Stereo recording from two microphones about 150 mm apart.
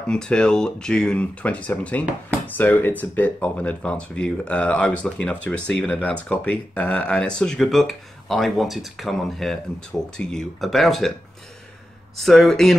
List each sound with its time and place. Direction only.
0.1 s speech: 5° left (ahead or behind)
12.2 s speech: centre (ahead or behind)